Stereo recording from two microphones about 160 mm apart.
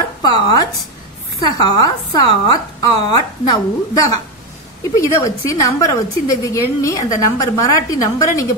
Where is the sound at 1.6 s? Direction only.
25° left (ahead or behind).